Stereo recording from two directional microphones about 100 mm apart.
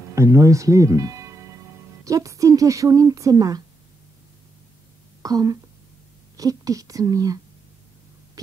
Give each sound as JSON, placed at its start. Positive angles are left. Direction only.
{"t": 0.1, "sound": "speech", "side_deg": -30}
{"t": 5.2, "sound": "speech", "side_deg": -40}